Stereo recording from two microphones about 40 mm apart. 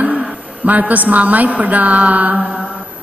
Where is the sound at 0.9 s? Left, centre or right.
Right.